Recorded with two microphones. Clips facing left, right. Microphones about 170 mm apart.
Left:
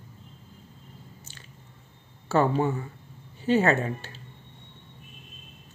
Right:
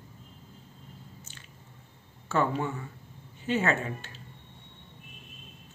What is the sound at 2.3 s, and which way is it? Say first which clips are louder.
A man's voice: left 5 dB; 35° left (ahead or behind).